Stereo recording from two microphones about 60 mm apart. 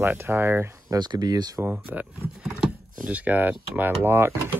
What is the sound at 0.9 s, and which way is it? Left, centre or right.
Speech, right.